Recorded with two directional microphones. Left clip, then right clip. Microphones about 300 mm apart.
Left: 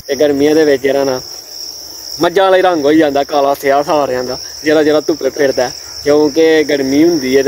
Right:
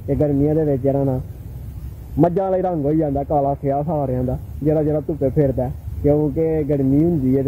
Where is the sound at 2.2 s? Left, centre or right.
Centre.